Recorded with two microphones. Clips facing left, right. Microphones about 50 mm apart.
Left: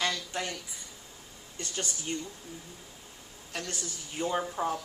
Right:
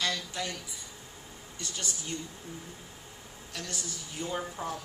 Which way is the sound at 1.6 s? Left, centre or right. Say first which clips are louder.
Left 2 dB; left.